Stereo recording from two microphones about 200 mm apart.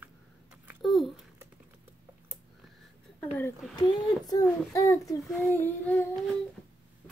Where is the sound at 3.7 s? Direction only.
20° left (ahead or behind).